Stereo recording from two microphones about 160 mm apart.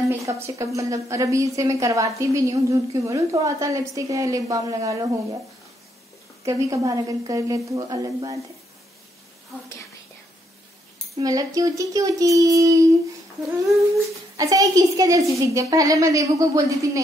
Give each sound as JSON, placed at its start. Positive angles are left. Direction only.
{"t": 0.1, "sound": "a woman's voice", "side_deg": -20}
{"t": 6.4, "sound": "a woman's voice", "side_deg": -20}
{"t": 11.1, "sound": "a woman's voice", "side_deg": -20}
{"t": 14.3, "sound": "a woman's voice", "side_deg": -20}